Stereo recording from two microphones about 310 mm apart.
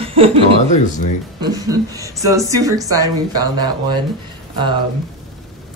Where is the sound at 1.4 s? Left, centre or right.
Centre.